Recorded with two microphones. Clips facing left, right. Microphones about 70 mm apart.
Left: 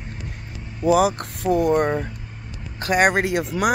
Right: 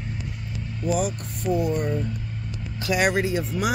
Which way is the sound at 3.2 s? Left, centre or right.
Left.